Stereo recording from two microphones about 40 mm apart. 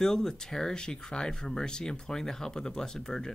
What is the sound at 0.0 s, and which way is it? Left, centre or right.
Speech, centre.